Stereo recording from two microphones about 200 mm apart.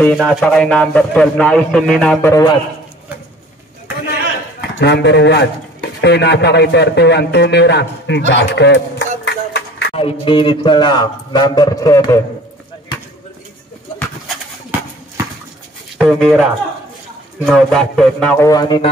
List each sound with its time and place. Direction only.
0.0 s a man's voice: centre (ahead or behind)
2.2 s a man's voice: 20° left (ahead or behind)
4.7 s speech: 60° left (ahead or behind)
8.3 s a sound: 60° left (ahead or behind)
9.9 s speech: 25° left (ahead or behind)
16.0 s speech: 5° right (ahead or behind)
17.5 s a man's voice: centre (ahead or behind)
18.5 s speech: 20° left (ahead or behind)